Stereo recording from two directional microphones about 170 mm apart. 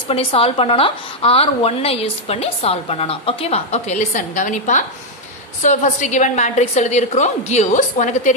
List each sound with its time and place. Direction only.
0.1 s a woman's voice: 35° left (ahead or behind)